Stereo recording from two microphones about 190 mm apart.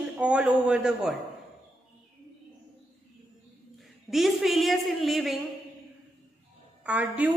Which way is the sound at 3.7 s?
Centre (ahead or behind).